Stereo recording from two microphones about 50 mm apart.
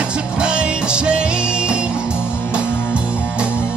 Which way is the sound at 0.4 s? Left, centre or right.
Centre.